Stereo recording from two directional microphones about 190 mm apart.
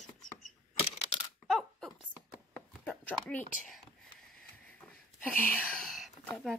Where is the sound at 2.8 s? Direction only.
10° left (ahead or behind).